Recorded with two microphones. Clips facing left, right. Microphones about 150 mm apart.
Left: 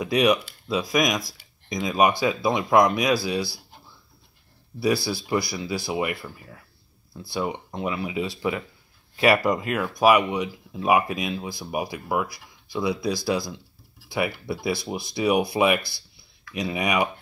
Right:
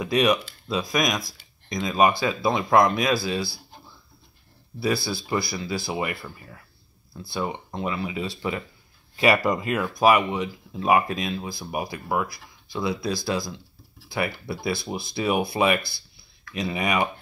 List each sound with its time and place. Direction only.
0.0 s speech: 10° left (ahead or behind)
4.7 s speech: 10° left (ahead or behind)